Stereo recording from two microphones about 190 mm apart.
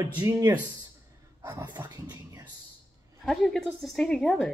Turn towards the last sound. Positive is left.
turn(degrees=0)  # may be behind; listen again after turning